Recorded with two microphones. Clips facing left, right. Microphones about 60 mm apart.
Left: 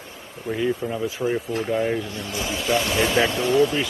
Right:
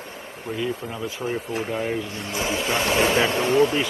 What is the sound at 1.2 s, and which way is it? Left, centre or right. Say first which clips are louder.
Speech: left 4 dB; centre.